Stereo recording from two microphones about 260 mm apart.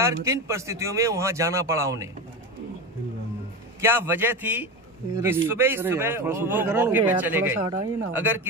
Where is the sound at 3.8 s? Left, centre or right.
Centre.